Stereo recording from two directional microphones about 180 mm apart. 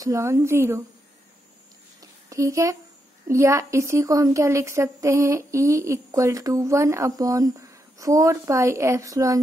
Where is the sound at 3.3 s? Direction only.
15° right (ahead or behind).